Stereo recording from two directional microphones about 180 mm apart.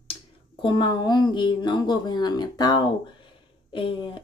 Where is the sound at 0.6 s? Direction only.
25° left (ahead or behind).